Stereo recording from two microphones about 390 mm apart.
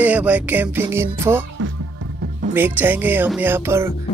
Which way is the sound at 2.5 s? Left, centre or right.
Centre.